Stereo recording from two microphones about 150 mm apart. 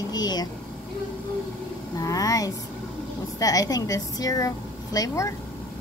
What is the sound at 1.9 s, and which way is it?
Speech, 25° left (ahead or behind).